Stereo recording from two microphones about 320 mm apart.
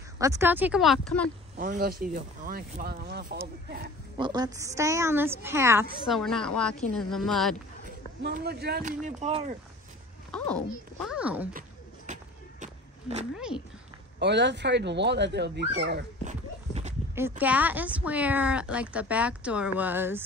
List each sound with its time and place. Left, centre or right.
0.2 s speech: centre
1.6 s speech: right
4.2 s a woman's voice: centre
8.2 s speech: right
10.3 s speech: centre
12.1 s a sound: right
14.2 s speech: right
17.1 s speech: centre